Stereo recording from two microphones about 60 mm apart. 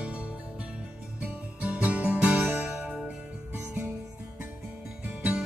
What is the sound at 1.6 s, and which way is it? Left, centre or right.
Music, right.